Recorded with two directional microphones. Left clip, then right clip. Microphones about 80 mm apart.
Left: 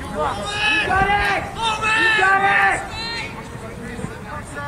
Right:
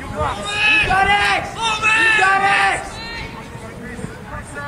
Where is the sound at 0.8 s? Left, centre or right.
Right.